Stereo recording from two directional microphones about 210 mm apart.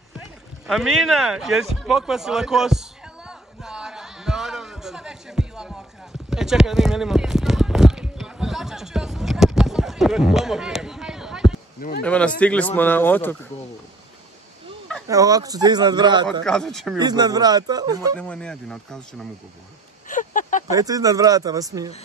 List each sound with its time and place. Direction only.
0.7 s speech: centre (ahead or behind)
3.3 s a sound: 5° right (ahead or behind)
12.0 s speech: 5° left (ahead or behind)
15.0 s speech: 15° right (ahead or behind)
16.4 s speech: centre (ahead or behind)
17.0 s speech: 20° right (ahead or behind)
18.1 s speech: 5° left (ahead or behind)
20.1 s a sound: 40° left (ahead or behind)
20.7 s speech: 15° right (ahead or behind)